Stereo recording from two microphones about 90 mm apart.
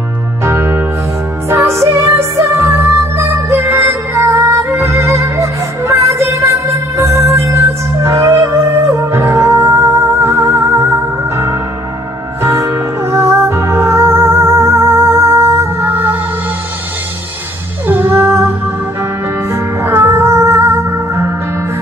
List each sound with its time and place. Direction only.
0.4 s music: 30° right (ahead or behind)
15.9 s music: 20° right (ahead or behind)
17.8 s music: 20° right (ahead or behind)
19.5 s music: 30° right (ahead or behind)